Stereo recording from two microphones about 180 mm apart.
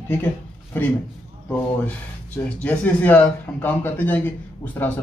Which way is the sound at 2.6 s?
10° left (ahead or behind).